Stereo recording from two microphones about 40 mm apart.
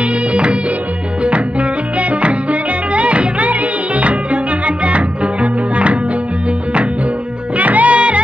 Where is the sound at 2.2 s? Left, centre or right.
Right.